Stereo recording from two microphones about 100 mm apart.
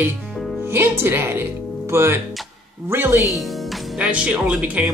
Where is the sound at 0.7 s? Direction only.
25° right (ahead or behind).